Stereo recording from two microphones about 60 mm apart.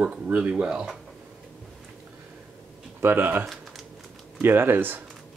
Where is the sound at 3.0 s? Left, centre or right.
Right.